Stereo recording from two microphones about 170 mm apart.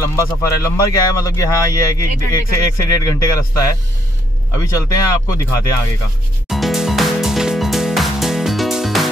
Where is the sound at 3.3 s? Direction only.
20° left (ahead or behind).